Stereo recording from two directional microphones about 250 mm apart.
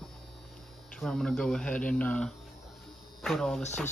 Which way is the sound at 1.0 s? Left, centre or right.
Centre.